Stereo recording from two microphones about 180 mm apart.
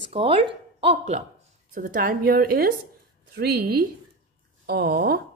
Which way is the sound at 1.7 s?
50° right (ahead or behind).